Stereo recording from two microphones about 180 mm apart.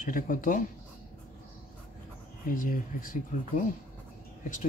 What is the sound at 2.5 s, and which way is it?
Speech, 50° left (ahead or behind).